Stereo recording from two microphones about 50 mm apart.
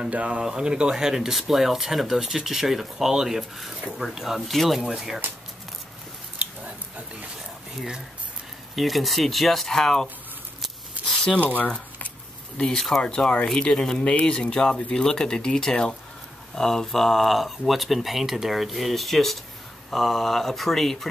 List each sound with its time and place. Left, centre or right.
0.0 s speech: right
0.4 s speech: centre
6.3 s biting: right
8.7 s speech: centre
11.0 s a sound: right
12.5 s speech: centre